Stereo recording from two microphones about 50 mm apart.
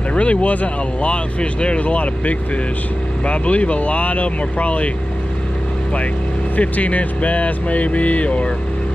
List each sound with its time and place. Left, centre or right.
0.1 s speech: left
6.5 s speech: left